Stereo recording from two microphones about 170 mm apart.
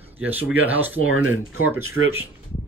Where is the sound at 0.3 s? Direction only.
10° right (ahead or behind).